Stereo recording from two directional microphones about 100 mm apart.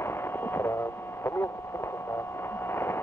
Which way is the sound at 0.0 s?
25° left (ahead or behind).